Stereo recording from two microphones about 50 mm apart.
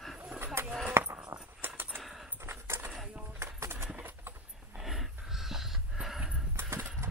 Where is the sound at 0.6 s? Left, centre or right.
Right.